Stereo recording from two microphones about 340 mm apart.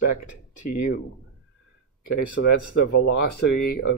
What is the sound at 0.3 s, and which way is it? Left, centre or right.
Speech, left.